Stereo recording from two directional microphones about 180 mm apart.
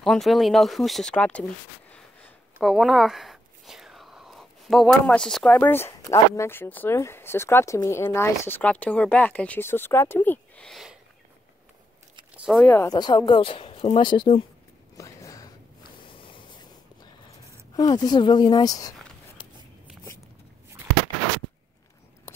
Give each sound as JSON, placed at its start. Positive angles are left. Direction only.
{"t": 0.0, "sound": "speech", "side_deg": 0}
{"t": 12.4, "sound": "speech", "side_deg": 0}
{"t": 12.7, "sound": "speech", "side_deg": 20}
{"t": 15.0, "sound": "a sound", "side_deg": 20}
{"t": 17.7, "sound": "speech", "side_deg": 20}